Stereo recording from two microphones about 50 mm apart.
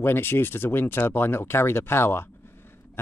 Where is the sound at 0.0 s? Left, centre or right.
Left.